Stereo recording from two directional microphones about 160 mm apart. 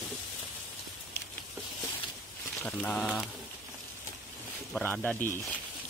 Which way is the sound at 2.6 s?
10° left (ahead or behind).